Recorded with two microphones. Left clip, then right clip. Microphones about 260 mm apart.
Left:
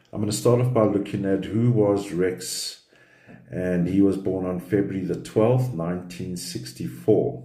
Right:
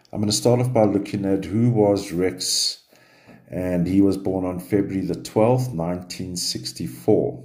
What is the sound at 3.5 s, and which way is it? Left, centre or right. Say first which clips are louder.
Speech: right 2 dB; right.